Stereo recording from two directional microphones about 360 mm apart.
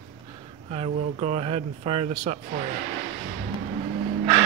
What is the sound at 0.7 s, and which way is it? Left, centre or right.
Speech, centre.